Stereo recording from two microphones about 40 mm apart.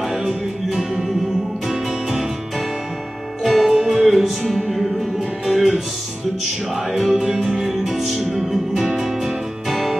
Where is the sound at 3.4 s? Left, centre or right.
Centre.